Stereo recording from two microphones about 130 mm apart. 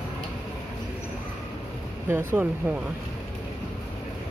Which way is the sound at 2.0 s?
15° right (ahead or behind).